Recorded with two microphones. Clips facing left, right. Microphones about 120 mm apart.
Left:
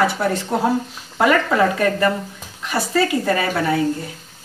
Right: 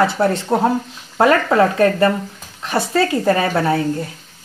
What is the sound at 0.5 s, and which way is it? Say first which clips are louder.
Speech: right 2 dB; 25° right (ahead or behind).